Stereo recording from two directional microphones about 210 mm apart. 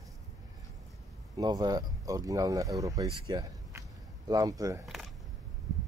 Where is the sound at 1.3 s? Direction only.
20° right (ahead or behind).